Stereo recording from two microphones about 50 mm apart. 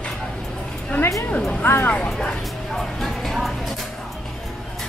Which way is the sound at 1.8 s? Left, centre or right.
Left.